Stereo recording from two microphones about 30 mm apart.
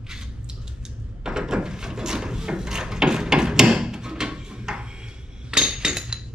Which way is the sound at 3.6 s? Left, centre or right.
Right.